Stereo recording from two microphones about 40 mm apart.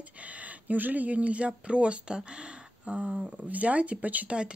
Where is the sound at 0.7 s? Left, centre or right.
Right.